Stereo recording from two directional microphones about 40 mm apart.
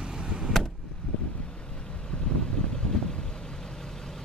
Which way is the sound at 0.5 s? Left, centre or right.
Centre.